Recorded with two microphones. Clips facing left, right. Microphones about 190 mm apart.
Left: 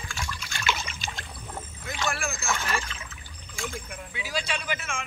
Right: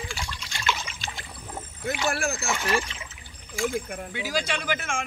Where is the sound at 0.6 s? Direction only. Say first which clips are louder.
Right 1 dB; 5° left (ahead or behind).